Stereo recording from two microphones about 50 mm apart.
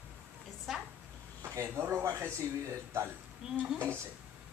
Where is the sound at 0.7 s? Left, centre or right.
Centre.